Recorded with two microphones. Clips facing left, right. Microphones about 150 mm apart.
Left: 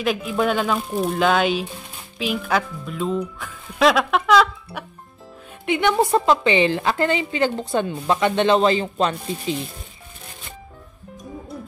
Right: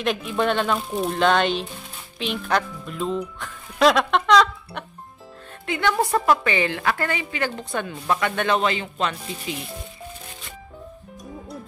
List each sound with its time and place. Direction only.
0.0 s a woman's voice: 5° left (ahead or behind)
5.7 s speech: 20° left (ahead or behind)